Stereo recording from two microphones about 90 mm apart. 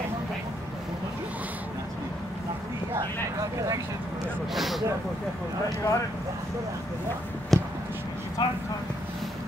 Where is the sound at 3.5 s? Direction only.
40° right (ahead or behind).